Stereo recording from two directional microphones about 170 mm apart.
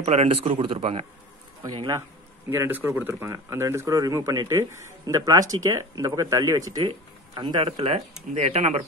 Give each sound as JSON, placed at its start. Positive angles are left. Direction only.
{"t": 0.0, "sound": "a man's voice", "side_deg": -35}
{"t": 1.6, "sound": "a man's voice", "side_deg": -20}